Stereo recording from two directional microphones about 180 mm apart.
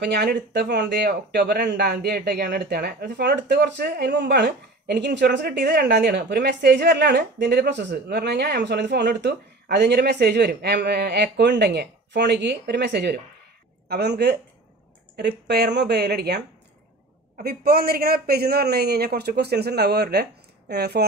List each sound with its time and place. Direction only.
0.0 s a man's voice: 65° right (ahead or behind)